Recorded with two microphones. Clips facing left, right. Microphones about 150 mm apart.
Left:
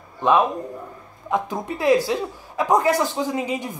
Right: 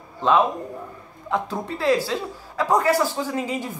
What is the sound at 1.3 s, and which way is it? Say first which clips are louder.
Speech: left 1 dB; 20° left (ahead or behind).